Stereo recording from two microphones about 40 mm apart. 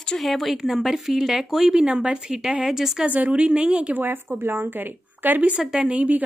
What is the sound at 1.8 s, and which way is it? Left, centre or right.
A woman's voice, right.